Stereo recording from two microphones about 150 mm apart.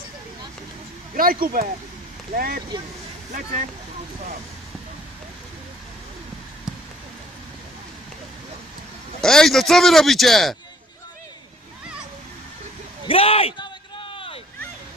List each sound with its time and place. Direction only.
1.1 s speech: 70° right (ahead or behind)
2.3 s speech: 90° right
9.2 s speech: 5° left (ahead or behind)
13.1 s a sound: 40° left (ahead or behind)